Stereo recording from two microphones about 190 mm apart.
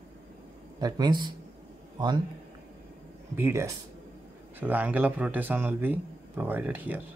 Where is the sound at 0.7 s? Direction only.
20° right (ahead or behind).